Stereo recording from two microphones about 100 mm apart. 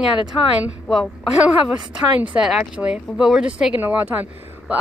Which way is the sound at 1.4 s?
10° right (ahead or behind).